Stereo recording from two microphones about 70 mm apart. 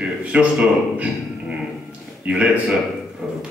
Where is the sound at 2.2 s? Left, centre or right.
Centre.